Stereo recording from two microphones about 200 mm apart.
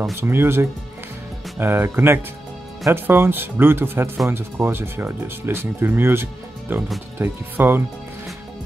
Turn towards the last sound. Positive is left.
turn(degrees=-10)  # may be behind; listen again after turning